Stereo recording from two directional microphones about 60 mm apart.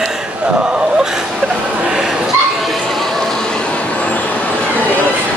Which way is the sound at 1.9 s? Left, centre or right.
Centre.